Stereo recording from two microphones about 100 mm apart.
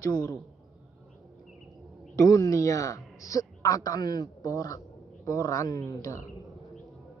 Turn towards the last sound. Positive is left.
turn(degrees=35)  # may be behind; listen again after turning